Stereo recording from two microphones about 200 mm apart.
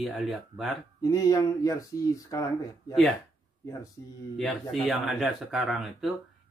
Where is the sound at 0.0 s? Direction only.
Centre (ahead or behind).